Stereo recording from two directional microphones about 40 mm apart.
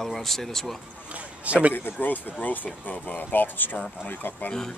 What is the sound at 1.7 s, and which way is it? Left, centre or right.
Speech, left.